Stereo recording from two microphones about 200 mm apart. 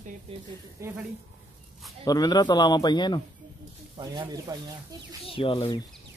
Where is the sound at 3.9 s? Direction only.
20° right (ahead or behind).